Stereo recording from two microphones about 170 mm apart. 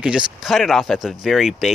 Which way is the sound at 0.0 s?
5° right (ahead or behind).